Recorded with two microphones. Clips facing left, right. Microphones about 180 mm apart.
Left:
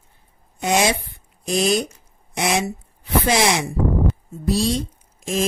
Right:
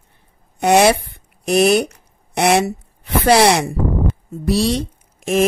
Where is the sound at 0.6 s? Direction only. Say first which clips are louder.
Right 7 dB; 65° right (ahead or behind).